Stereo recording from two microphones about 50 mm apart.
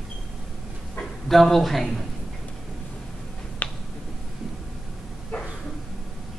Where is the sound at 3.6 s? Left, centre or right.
Left.